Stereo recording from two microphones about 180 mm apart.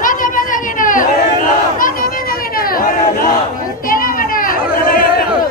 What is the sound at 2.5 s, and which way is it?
Chatter, 55° left (ahead or behind).